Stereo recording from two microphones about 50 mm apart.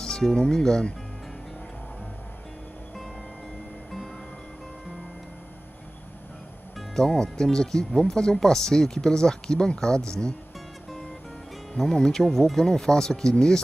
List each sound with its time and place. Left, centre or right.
0.0 s speech: centre
7.0 s speech: centre
11.7 s speech: centre